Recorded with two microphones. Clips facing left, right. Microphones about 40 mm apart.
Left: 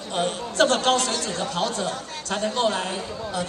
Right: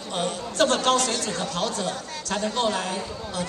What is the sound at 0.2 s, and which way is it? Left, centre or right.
A man's voice, left.